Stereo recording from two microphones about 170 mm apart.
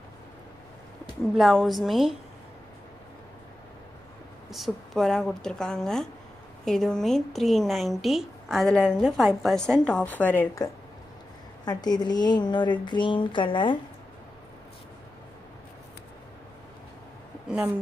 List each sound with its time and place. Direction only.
1.3 s a woman's voice: centre (ahead or behind)
4.5 s a woman's voice: centre (ahead or behind); by 13.7 s 30° left (ahead or behind)